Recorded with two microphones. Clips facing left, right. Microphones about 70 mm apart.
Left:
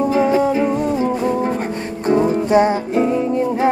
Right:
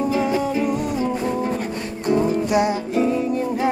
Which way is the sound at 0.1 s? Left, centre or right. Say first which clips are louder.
Left 5 dB; left.